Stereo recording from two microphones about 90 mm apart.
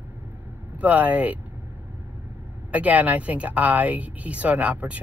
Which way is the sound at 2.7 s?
15° right (ahead or behind).